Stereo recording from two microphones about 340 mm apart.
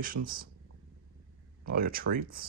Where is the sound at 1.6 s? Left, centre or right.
Right.